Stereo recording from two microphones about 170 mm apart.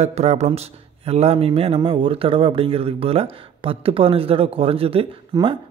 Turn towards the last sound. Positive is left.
turn(degrees=-30)  # may be behind; listen again after turning